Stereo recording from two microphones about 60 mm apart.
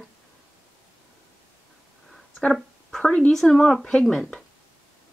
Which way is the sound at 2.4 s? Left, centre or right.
Centre.